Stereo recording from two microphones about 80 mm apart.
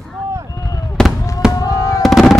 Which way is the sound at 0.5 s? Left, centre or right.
Left.